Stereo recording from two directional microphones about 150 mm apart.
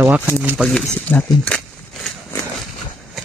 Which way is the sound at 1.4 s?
5° left (ahead or behind).